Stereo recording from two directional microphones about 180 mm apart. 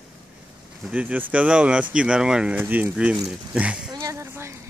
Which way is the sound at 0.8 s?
5° right (ahead or behind).